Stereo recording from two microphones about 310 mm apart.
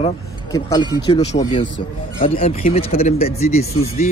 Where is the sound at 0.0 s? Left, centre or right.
Centre.